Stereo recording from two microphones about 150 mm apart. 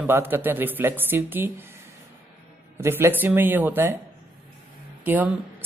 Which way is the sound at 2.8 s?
15° right (ahead or behind).